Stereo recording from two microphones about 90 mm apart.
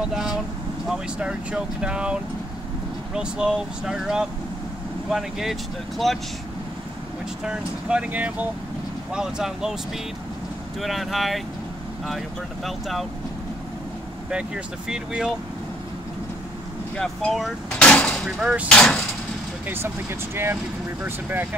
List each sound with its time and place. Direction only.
0.0 s speech: 5° right (ahead or behind)
3.2 s speech: 10° right (ahead or behind)
7.4 s speech: 10° right (ahead or behind)
9.1 s speech: 5° right (ahead or behind)
10.8 s speech: centre (ahead or behind)
12.6 s speech: centre (ahead or behind)
14.3 s speech: 10° right (ahead or behind)
16.9 s speech: 5° left (ahead or behind)
17.8 s a sound: 10° left (ahead or behind)
18.2 s speech: 10° right (ahead or behind)
18.7 s speech: 10° left (ahead or behind)
19.7 s speech: 25° right (ahead or behind)